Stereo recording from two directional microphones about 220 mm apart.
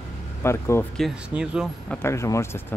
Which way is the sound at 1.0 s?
5° right (ahead or behind).